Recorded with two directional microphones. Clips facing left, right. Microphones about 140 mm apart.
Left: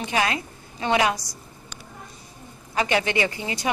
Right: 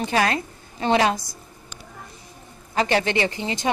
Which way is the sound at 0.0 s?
40° right (ahead or behind).